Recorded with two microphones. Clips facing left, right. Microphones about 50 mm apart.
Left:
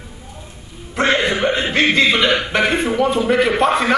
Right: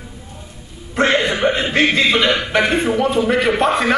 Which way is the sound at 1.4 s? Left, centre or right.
Centre.